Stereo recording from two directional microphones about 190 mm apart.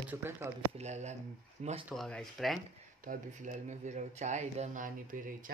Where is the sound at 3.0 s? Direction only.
45° right (ahead or behind).